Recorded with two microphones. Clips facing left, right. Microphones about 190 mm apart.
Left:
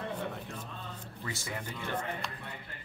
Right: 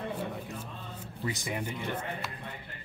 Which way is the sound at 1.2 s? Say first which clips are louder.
Right 5 dB; 15° right (ahead or behind).